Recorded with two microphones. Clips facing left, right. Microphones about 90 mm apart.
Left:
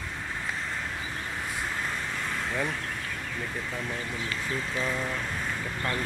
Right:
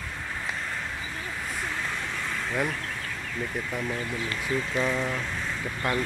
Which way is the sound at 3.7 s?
10° right (ahead or behind).